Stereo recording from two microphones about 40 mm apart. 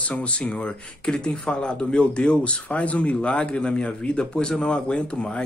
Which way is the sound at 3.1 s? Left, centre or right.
Left.